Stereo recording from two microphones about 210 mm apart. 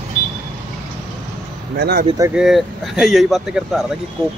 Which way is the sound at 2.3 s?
Centre (ahead or behind).